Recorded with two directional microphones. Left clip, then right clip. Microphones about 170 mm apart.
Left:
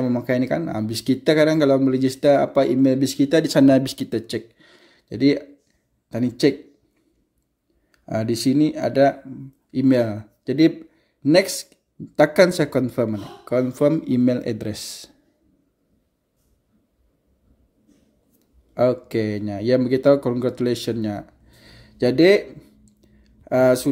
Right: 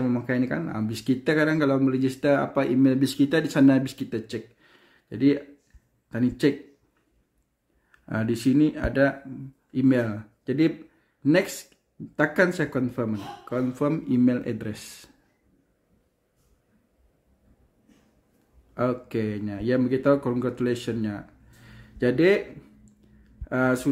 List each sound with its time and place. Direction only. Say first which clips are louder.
0.0 s speech: left 5 dB; 25° left (ahead or behind)
7.9 s speech: left 5 dB; 15° left (ahead or behind)
18.8 s speech: left 7 dB; 30° left (ahead or behind)
22.9 s a sound: even; 30° left (ahead or behind)